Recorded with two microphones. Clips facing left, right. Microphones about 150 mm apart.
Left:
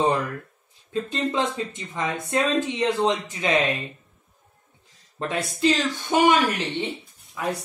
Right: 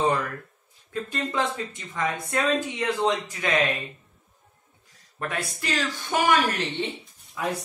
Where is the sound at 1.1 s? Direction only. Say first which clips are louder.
Left 2 dB; 20° left (ahead or behind).